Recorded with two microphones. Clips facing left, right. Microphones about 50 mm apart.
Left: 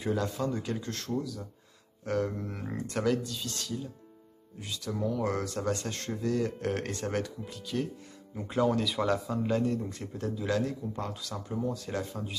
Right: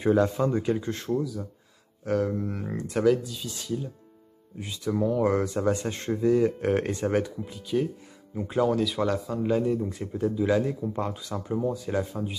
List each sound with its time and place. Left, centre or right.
0.0 s speech: right; by 12.4 s centre